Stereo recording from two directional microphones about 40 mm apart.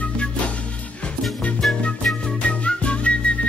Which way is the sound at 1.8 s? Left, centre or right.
Left.